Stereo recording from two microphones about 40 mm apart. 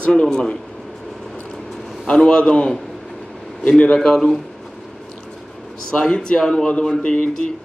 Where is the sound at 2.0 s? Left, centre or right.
Left.